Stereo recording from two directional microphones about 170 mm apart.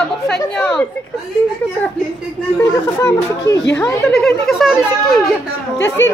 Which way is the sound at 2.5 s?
15° left (ahead or behind).